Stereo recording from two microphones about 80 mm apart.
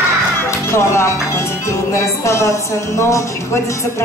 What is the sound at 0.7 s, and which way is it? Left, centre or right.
Speech, left.